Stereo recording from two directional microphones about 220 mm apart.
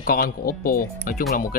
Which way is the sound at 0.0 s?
40° left (ahead or behind).